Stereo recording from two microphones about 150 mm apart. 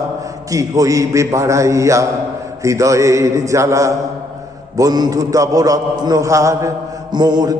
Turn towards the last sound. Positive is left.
turn(degrees=-30)  # may be behind; listen again after turning